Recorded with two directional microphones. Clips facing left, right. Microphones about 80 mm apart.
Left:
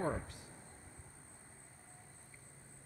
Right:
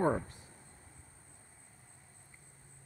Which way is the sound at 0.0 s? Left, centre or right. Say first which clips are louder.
Right 7 dB; right.